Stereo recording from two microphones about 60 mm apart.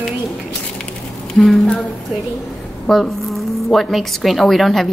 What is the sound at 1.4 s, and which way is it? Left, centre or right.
Speech, centre.